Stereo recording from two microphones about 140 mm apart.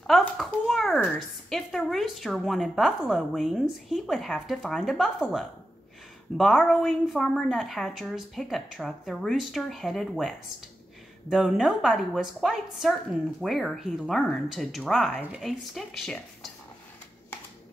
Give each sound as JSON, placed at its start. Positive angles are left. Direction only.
{"t": 0.0, "sound": "a woman's voice", "side_deg": 0}